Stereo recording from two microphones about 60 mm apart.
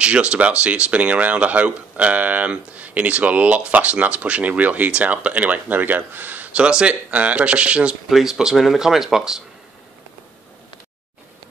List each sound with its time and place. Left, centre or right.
0.0 s speech: centre
8.1 s speech: centre